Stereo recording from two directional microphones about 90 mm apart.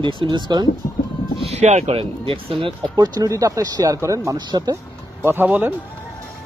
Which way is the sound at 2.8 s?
45° right (ahead or behind).